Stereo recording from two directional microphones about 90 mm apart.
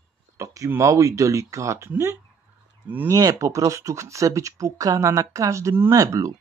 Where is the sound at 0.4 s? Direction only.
35° right (ahead or behind).